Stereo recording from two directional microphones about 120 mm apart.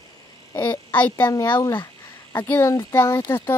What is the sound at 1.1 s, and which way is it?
Speech, 25° left (ahead or behind).